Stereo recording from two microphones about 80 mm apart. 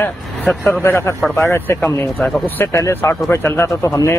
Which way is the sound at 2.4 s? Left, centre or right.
Left.